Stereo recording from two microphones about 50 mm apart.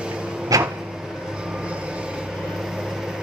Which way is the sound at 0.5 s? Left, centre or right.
Right.